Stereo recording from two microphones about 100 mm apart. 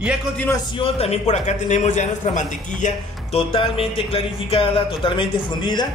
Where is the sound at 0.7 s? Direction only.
75° left (ahead or behind).